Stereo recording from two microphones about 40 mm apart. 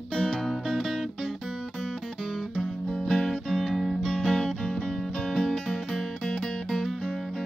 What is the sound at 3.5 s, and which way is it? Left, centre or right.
Music, centre.